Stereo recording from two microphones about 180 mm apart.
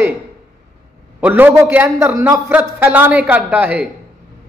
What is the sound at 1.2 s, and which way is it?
A man's voice, 10° right (ahead or behind).